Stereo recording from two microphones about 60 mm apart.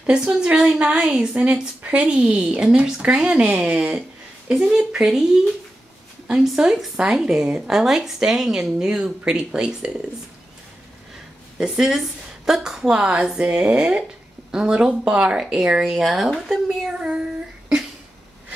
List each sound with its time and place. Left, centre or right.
0.0 s a woman's voice: centre
6.2 s speech: centre
11.5 s speech: centre